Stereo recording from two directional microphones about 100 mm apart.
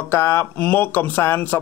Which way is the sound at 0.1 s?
25° left (ahead or behind).